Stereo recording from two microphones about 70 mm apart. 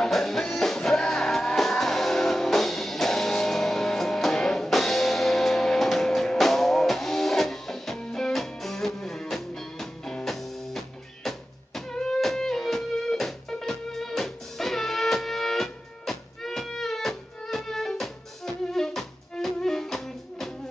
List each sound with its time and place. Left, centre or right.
0.0 s music: centre